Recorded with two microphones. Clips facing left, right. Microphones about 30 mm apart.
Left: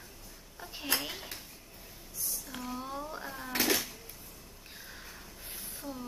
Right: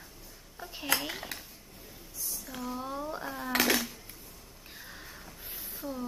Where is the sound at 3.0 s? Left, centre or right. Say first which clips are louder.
Right 4 dB; centre.